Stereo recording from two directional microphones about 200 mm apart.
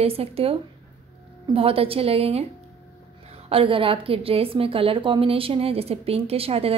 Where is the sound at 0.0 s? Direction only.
30° right (ahead or behind).